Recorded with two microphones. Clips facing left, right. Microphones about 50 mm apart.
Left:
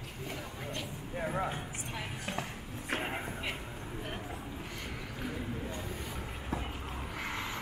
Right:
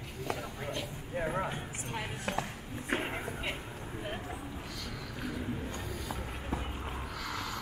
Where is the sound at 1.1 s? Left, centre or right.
Centre.